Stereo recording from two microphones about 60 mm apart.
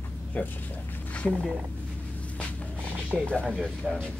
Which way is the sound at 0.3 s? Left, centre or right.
Left.